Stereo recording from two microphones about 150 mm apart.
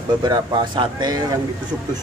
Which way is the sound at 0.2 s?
30° right (ahead or behind).